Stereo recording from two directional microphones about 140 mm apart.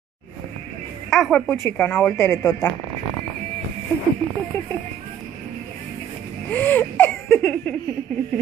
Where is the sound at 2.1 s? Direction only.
25° left (ahead or behind).